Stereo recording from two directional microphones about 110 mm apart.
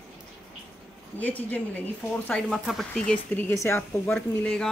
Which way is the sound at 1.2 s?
15° left (ahead or behind).